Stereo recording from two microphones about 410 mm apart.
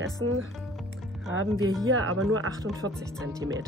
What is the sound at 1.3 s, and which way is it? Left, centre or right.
Speech, right.